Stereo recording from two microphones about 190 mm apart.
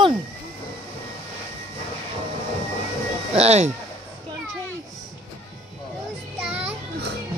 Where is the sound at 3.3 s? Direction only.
35° right (ahead or behind).